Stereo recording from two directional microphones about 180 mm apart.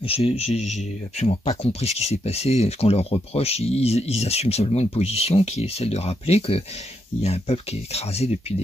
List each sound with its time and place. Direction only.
0.0 s speech: 30° left (ahead or behind)